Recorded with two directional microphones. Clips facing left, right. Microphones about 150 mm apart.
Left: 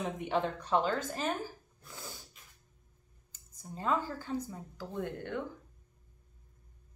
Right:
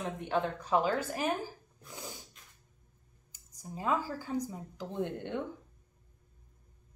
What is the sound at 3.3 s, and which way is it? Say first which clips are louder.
Speech: right 1 dB; 10° right (ahead or behind).